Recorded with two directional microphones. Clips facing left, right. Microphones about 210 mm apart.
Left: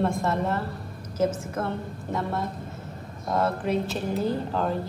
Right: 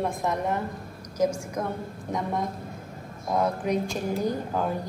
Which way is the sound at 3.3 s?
15° right (ahead or behind).